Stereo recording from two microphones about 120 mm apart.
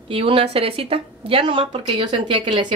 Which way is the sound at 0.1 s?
50° right (ahead or behind).